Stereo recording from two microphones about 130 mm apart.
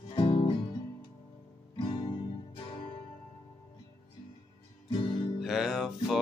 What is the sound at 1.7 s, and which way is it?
Guitar, 35° left (ahead or behind).